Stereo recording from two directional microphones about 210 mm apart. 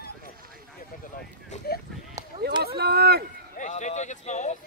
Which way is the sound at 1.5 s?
30° left (ahead or behind).